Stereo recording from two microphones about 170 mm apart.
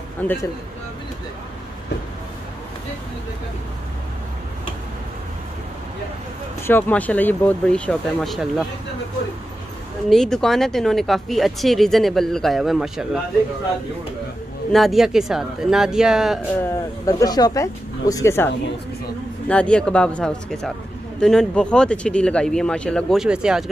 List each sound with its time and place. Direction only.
0.2 s speech: 10° left (ahead or behind)
6.6 s speech: 10° left (ahead or behind)
10.0 s speech: centre (ahead or behind)
14.7 s speech: centre (ahead or behind)
16.6 s speech: 20° left (ahead or behind); by 23.6 s 5° right (ahead or behind)